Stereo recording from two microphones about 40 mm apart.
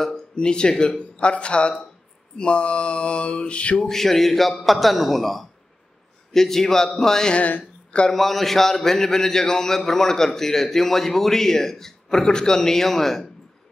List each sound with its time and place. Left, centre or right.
0.0 s speech: left
2.3 s a sound: left
3.8 s a man's voice: centre
7.3 s speech: left
8.1 s a man's voice: centre